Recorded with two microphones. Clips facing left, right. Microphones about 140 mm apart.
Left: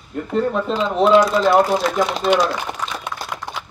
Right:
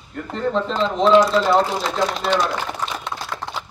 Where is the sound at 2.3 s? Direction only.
15° left (ahead or behind).